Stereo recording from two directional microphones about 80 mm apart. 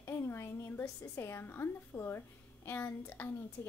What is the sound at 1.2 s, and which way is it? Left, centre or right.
A woman's voice, left.